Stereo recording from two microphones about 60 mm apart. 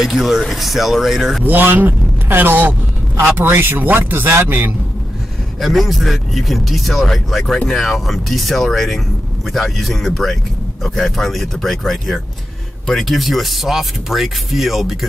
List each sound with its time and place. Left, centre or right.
0.0 s speech: centre
1.4 s speech: right
5.6 s speech: centre